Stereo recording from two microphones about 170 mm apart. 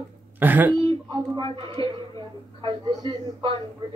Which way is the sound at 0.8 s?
30° right (ahead or behind).